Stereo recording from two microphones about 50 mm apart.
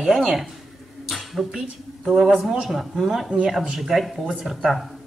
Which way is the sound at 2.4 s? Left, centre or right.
Centre.